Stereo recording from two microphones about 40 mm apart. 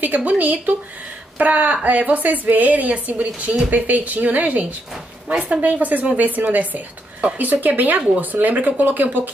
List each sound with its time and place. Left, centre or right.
0.0 s a woman's voice: right